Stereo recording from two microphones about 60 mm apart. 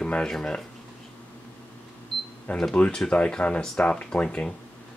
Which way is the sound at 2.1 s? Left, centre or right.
Centre.